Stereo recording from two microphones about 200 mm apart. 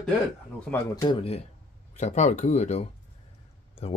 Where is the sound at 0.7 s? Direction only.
20° left (ahead or behind).